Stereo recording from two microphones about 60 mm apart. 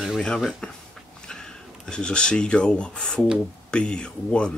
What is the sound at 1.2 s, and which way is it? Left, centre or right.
Speech, centre.